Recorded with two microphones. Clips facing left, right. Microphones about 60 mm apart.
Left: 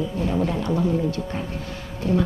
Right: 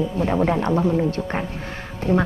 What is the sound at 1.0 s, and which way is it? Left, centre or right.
Speech, right.